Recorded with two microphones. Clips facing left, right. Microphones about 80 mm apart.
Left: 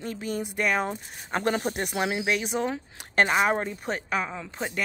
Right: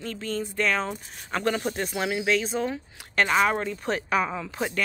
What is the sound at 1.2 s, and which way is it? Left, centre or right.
Speech, left.